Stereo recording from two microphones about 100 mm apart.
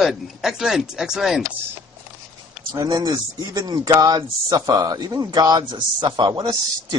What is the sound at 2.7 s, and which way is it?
Speech, 40° right (ahead or behind).